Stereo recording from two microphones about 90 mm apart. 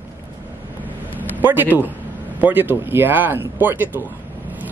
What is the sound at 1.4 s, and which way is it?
Speech, 20° right (ahead or behind).